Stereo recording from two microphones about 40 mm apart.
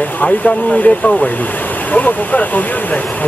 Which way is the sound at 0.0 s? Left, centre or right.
Left.